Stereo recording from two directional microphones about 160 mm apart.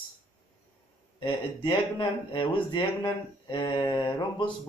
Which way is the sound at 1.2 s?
30° left (ahead or behind).